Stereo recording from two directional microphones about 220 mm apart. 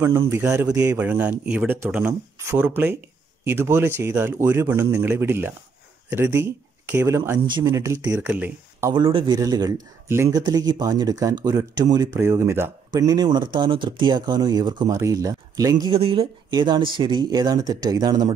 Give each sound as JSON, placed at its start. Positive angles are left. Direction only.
{"t": 0.3, "sound": "speech", "side_deg": -10}
{"t": 8.9, "sound": "speech", "side_deg": -25}